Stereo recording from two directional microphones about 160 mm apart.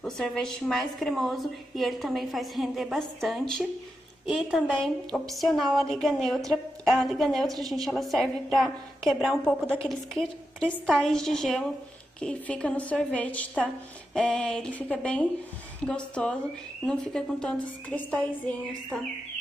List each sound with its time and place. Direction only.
0.0 s a woman's voice: 5° left (ahead or behind)